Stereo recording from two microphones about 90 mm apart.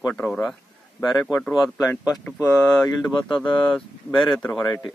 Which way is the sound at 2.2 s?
15° left (ahead or behind).